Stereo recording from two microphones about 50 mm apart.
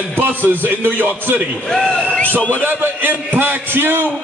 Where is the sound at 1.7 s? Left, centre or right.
Centre.